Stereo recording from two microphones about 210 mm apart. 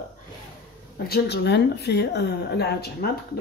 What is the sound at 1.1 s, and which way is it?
Speech, 55° left (ahead or behind).